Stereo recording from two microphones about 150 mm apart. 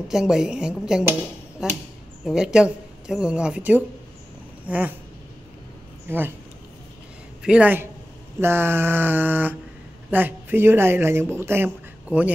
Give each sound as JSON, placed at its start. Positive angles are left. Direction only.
{"t": 0.1, "sound": "a woman's voice", "side_deg": -5}
{"t": 6.0, "sound": "speech", "side_deg": -15}
{"t": 7.4, "sound": "speech", "side_deg": -10}